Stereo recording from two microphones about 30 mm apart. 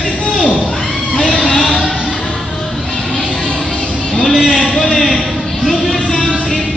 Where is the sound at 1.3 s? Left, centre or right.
Left.